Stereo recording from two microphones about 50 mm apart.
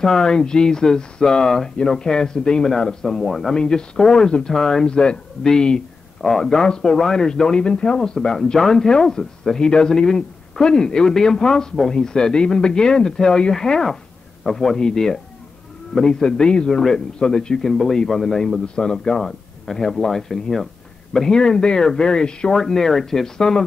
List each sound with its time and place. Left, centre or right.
0.0 s speech: centre